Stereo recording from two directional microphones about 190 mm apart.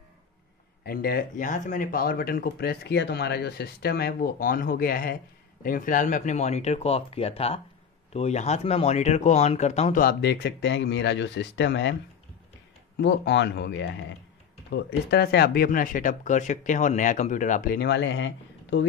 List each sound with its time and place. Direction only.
0.8 s speech: 50° left (ahead or behind); by 10.0 s 35° left (ahead or behind)
10.0 s speech: 65° left (ahead or behind)